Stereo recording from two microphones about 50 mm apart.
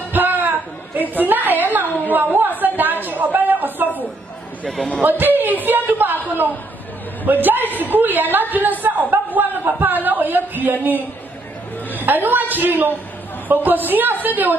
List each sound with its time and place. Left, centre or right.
0.1 s a sound: right
1.1 s a woman's voice: right
2.6 s a sound: right
3.0 s a man's voice: right
5.0 s a woman's voice: right
12.0 s a woman's voice: right